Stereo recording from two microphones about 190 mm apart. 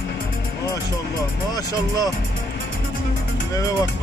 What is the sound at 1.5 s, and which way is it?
Speech, 20° left (ahead or behind).